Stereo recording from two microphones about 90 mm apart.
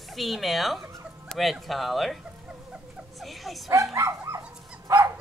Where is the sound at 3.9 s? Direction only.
35° right (ahead or behind).